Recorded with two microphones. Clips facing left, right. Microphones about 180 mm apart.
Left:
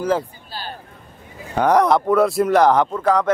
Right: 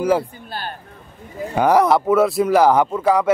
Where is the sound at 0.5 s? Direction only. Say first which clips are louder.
Right 3 dB; 55° right (ahead or behind).